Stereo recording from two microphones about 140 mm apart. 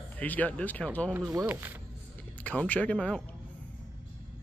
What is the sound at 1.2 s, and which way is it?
Speech, 25° right (ahead or behind).